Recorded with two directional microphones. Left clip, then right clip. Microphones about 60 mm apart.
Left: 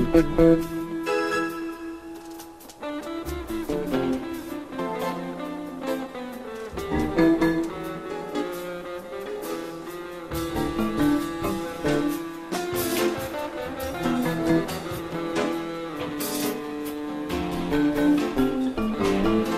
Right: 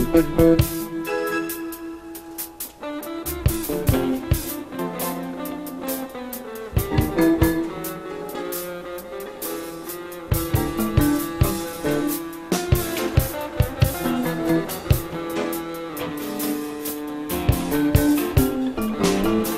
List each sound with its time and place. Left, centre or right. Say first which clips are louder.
0.1 s music: right 2 dB; left
3.5 s music: right 2 dB; left
6.9 s music: right 1 dB; left
10.3 s music: right 2 dB; left
17.3 s music: right 3 dB; left